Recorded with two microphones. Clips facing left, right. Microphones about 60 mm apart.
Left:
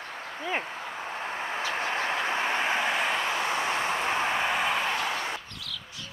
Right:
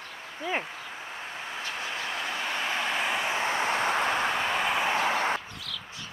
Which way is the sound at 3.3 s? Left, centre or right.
Right.